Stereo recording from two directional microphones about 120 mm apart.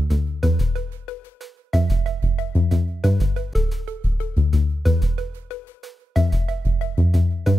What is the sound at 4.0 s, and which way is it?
Music, 15° right (ahead or behind).